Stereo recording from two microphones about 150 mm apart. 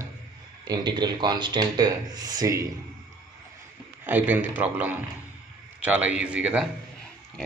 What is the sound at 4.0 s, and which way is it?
A man's voice, 10° right (ahead or behind).